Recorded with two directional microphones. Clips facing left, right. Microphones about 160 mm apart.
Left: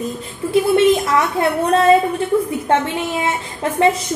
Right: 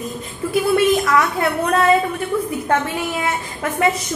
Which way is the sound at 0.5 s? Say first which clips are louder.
Left 3 dB; 25° left (ahead or behind).